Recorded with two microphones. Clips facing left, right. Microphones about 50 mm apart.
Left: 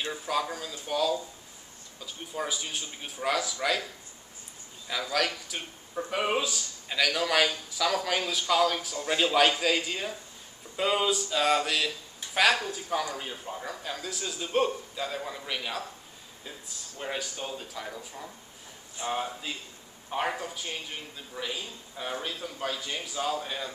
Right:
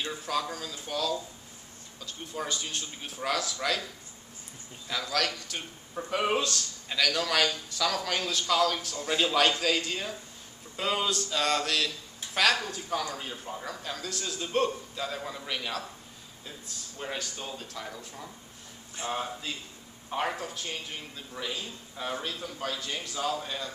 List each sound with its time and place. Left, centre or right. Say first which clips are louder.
0.0 s a man's voice: left 1 dB; centre
4.8 s a man's voice: left 1 dB; centre
17.0 s a man's voice: left 2 dB; centre